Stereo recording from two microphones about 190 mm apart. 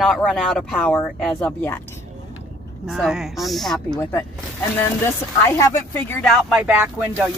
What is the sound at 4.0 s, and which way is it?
Speech, 15° left (ahead or behind).